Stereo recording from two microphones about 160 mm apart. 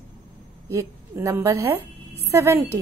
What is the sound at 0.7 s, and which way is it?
A woman's voice, 15° right (ahead or behind).